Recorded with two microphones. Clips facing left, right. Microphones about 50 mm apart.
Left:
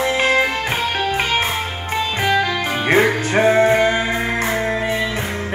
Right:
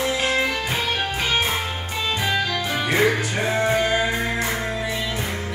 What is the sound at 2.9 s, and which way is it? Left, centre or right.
Music, left.